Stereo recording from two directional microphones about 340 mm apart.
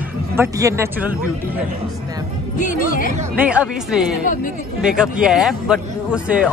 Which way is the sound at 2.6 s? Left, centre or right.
Left.